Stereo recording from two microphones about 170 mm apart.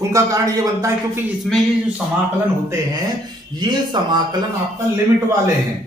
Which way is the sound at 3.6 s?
25° right (ahead or behind).